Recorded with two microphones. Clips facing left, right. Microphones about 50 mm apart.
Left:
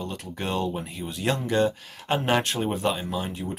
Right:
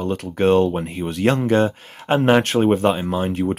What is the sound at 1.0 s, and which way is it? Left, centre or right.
Speech, right.